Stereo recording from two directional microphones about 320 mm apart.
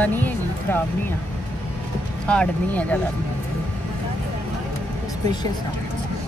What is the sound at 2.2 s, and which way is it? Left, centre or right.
Speech, centre.